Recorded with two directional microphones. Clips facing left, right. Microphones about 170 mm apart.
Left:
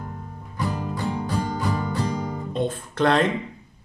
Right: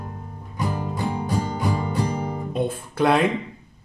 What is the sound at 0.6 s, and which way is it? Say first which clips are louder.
Music: right 1 dB; 20° right (ahead or behind).